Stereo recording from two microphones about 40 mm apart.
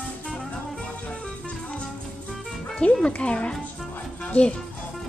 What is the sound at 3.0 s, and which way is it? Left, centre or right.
Speech, left.